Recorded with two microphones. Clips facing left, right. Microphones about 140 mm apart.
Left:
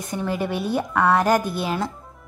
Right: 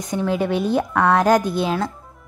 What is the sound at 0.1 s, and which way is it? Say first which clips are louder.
A woman's voice: right 5 dB; 5° left (ahead or behind).